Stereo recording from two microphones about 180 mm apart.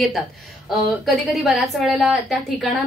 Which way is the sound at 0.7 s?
Centre (ahead or behind).